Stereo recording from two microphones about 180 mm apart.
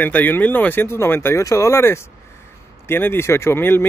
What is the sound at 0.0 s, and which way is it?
Speech, 10° left (ahead or behind).